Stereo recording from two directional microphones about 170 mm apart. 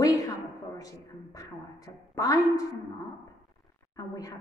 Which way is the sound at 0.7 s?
20° left (ahead or behind).